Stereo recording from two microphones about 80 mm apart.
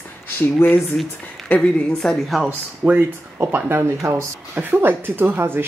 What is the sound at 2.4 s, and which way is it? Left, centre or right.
Speech, centre.